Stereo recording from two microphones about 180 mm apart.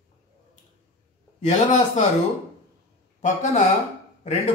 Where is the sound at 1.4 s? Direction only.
45° left (ahead or behind).